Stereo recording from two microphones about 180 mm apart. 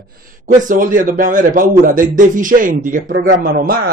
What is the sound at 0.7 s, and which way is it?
Speech, 50° right (ahead or behind).